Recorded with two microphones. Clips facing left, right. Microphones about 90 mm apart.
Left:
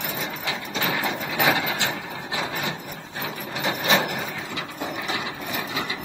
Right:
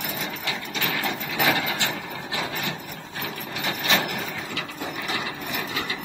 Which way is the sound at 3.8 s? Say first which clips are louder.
Left 2 dB; 15° left (ahead or behind).